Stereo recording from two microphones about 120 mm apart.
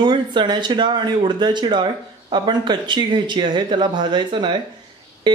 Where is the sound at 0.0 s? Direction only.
40° right (ahead or behind).